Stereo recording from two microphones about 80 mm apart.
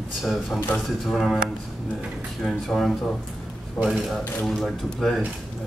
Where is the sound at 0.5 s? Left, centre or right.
Centre.